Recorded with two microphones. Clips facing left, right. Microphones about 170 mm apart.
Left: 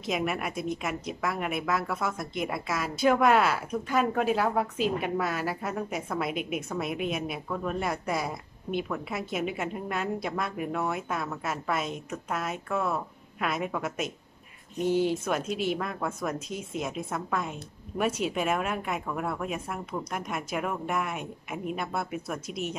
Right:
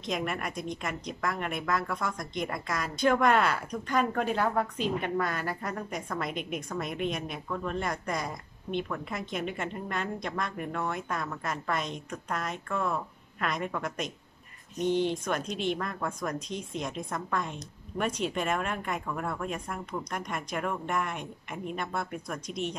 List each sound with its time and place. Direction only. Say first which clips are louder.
0.0 s a woman's voice: left 3 dB; 5° left (ahead or behind)